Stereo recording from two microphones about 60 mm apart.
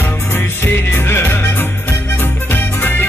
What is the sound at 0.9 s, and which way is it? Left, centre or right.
Music, left.